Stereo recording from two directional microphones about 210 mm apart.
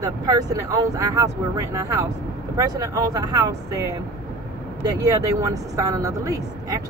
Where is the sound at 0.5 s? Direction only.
15° right (ahead or behind).